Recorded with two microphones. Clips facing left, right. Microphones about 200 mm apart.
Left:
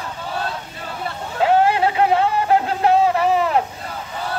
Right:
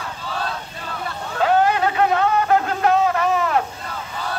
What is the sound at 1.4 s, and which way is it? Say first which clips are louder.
Music: left 2 dB; 25° left (ahead or behind).